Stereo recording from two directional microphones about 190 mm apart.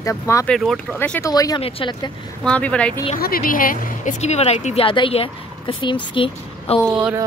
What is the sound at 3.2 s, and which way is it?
Speech, 50° left (ahead or behind).